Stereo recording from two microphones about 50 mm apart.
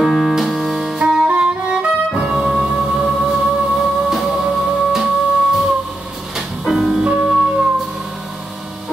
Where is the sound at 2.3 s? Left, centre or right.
Centre.